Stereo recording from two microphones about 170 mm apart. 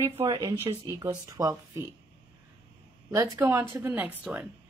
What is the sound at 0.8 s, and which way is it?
Speech, 20° right (ahead or behind).